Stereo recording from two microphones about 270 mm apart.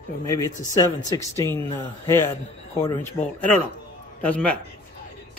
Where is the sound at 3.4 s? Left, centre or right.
Centre.